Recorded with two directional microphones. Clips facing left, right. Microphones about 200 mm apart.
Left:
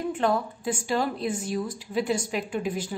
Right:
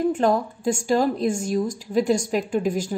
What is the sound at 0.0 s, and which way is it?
Speech, 45° right (ahead or behind).